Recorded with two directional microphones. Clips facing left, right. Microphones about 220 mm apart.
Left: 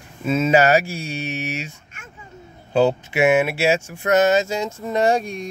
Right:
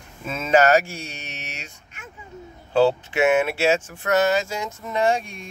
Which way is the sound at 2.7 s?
15° left (ahead or behind).